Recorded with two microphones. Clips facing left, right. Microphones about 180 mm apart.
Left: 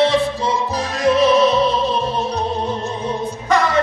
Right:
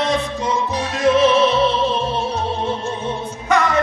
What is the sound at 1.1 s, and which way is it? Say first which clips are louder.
Opera: left 1 dB; 35° left (ahead or behind).